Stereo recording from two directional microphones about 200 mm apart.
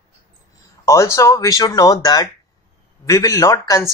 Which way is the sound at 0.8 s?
15° left (ahead or behind).